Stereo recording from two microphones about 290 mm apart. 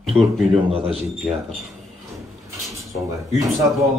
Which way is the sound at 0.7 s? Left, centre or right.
Centre.